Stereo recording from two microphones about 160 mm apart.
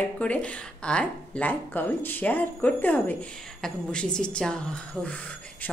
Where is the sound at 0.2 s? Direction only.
10° left (ahead or behind).